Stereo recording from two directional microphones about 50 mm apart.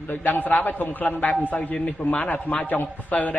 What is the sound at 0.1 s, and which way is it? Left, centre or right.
A man's voice, left.